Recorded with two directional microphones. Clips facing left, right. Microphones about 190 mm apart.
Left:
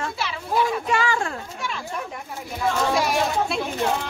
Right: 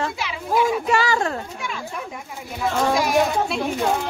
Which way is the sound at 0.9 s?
40° right (ahead or behind).